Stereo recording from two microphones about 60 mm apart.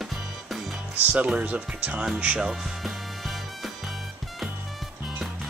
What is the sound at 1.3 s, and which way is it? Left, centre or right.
Speech, right.